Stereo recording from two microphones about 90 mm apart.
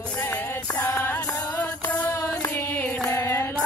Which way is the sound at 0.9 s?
20° left (ahead or behind).